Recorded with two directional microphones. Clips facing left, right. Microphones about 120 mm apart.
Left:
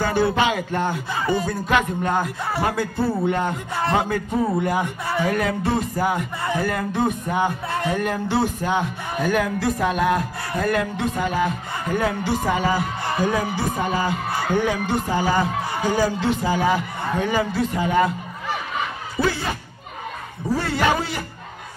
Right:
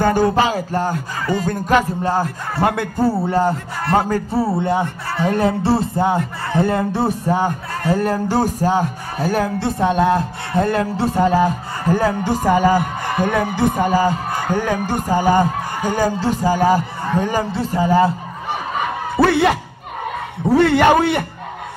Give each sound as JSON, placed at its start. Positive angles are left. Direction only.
{"t": 0.0, "sound": "speech", "side_deg": -40}
{"t": 1.2, "sound": "speech", "side_deg": 15}
{"t": 1.5, "sound": "speech", "side_deg": -40}
{"t": 2.6, "sound": "a man's voice", "side_deg": -60}
{"t": 3.3, "sound": "speech", "side_deg": -35}
{"t": 19.1, "sound": "a sound", "side_deg": -70}
{"t": 20.4, "sound": "a man's voice", "side_deg": -65}